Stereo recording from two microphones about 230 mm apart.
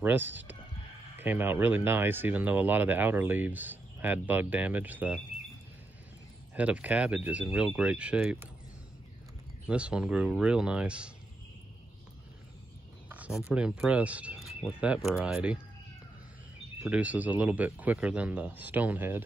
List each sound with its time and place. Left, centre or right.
0.2 s speech: right
1.1 s speech: centre
6.5 s speech: centre
9.7 s speech: centre
13.1 s a sound: centre
13.5 s speech: centre
16.8 s speech: centre